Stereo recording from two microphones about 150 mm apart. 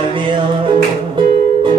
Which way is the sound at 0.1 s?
35° right (ahead or behind).